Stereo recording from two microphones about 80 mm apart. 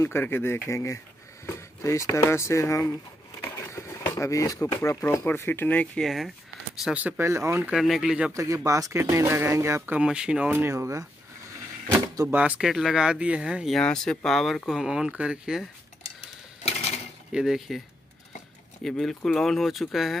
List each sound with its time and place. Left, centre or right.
0.0 s speech: left
5.9 s speech: centre
7.2 s speech: right
7.7 s speech: centre
8.3 s speech: right
9.9 s speech: centre
10.7 s speech: right
12.2 s speech: right
12.5 s speech: centre
13.8 s speech: centre
17.3 s speech: centre
18.9 s speech: centre